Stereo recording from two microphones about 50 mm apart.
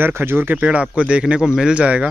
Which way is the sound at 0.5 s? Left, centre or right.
Right.